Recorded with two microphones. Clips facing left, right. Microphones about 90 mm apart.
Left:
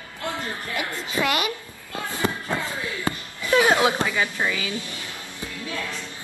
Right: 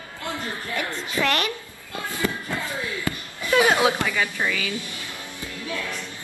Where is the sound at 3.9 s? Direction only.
15° left (ahead or behind).